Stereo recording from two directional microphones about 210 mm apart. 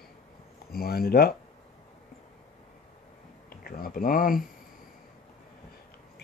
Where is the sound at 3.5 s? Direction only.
45° left (ahead or behind).